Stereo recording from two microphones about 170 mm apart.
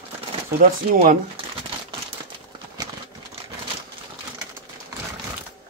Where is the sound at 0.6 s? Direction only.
55° right (ahead or behind).